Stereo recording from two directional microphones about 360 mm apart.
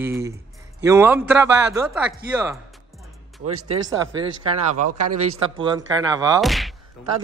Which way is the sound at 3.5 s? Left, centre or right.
Right.